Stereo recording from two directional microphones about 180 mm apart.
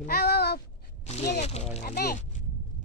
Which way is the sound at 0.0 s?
60° left (ahead or behind).